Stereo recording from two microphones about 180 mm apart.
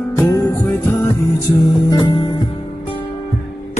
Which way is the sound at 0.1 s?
15° left (ahead or behind).